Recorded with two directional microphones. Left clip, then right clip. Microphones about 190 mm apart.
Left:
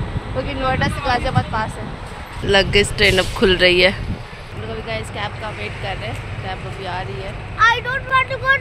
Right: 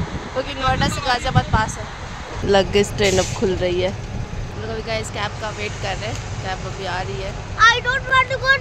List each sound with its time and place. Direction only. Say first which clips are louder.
0.5 s speech: left 1 dB; 5° right (ahead or behind)
3.3 s speech: left 7 dB; centre (ahead or behind)
7.5 s speech: right 1 dB; 10° left (ahead or behind)